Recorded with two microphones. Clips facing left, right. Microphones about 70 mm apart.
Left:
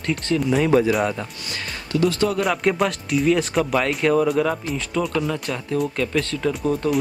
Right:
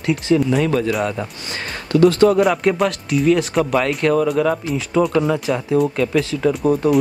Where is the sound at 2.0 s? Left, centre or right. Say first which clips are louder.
Right 8 dB; right.